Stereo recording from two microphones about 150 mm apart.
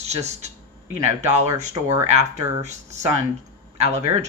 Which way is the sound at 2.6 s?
50° right (ahead or behind).